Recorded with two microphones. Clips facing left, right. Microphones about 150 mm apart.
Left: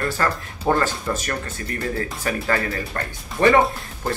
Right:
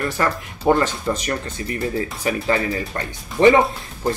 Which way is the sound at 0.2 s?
15° right (ahead or behind).